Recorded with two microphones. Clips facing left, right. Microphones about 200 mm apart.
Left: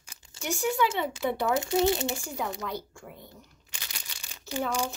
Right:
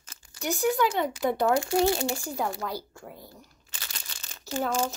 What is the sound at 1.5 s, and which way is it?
Speech, 20° left (ahead or behind).